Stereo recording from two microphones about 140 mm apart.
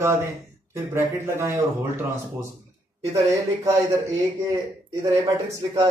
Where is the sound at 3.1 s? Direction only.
25° right (ahead or behind).